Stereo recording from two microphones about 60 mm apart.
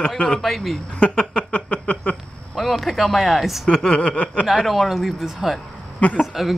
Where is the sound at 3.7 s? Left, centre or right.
Centre.